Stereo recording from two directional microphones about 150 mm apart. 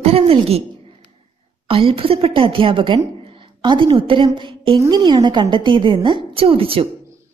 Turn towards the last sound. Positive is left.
turn(degrees=-40)  # may be behind; listen again after turning